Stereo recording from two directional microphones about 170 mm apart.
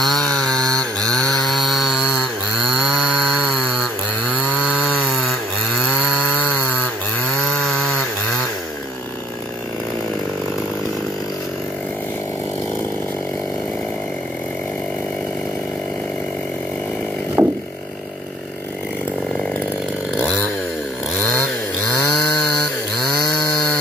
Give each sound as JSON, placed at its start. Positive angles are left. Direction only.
{"t": 0.0, "sound": "chainsaw", "side_deg": 0}
{"t": 7.3, "sound": "chainsaw", "side_deg": 0}
{"t": 17.4, "sound": "a sound", "side_deg": -15}
{"t": 20.2, "sound": "chainsaw", "side_deg": 10}
{"t": 22.1, "sound": "chainsaw", "side_deg": 0}